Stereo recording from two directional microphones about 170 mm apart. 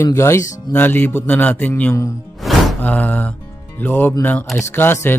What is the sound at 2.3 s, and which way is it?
Music, 5° left (ahead or behind).